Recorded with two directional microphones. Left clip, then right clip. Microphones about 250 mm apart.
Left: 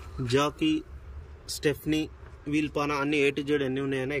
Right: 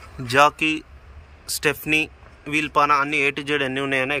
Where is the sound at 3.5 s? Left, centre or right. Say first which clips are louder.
Right 6 dB; right.